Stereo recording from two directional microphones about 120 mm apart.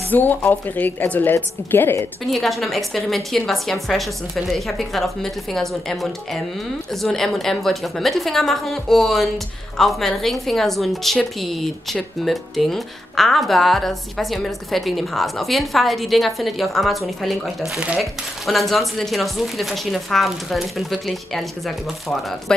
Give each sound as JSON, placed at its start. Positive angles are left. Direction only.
{"t": 0.1, "sound": "a woman's voice", "side_deg": 15}
{"t": 2.2, "sound": "a woman's voice", "side_deg": 0}